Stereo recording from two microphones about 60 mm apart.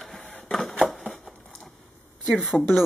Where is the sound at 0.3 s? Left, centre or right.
Centre.